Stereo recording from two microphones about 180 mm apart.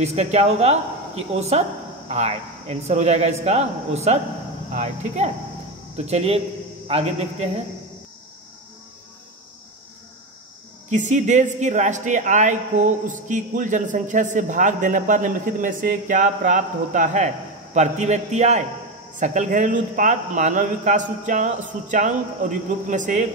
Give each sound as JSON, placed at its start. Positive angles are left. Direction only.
{"t": 0.0, "sound": "a man's voice", "side_deg": -35}
{"t": 10.9, "sound": "a man's voice", "side_deg": -40}